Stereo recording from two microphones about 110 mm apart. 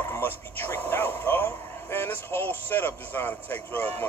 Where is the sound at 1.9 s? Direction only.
20° left (ahead or behind).